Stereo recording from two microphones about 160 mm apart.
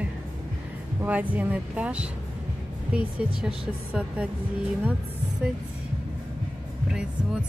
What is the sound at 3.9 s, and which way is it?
Speech, 10° right (ahead or behind).